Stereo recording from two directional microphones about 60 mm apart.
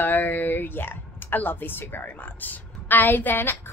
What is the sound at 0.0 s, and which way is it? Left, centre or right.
A woman's voice, left.